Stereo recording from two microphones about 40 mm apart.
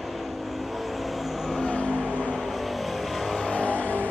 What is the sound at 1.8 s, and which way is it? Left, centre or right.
Vehicle, right.